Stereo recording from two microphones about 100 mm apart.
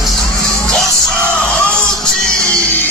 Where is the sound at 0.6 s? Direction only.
10° left (ahead or behind).